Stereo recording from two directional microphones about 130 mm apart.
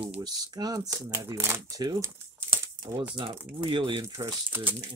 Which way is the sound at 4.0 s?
20° right (ahead or behind).